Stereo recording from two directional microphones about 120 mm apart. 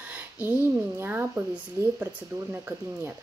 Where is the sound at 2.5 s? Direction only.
15° right (ahead or behind).